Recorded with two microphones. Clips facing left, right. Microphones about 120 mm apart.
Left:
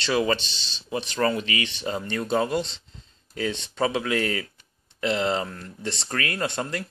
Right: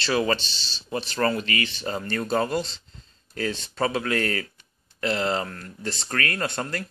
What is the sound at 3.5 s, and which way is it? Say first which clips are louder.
Speech: even; 20° left (ahead or behind).